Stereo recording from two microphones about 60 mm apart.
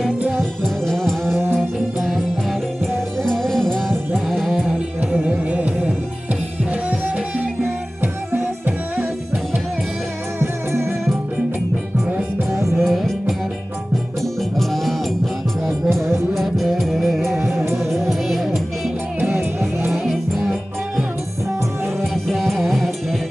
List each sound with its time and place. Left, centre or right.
0.4 s music: centre
3.3 s music: centre
5.1 s music: right
8.0 s music: right
10.4 s music: right
12.8 s music: centre
14.6 s music: centre
16.3 s music: centre
19.1 s music: right
22.1 s music: centre